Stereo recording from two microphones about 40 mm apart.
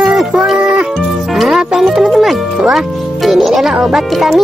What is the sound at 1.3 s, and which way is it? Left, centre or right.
Speech, centre.